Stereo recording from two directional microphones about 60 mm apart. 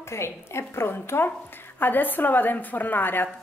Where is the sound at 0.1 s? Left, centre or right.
Left.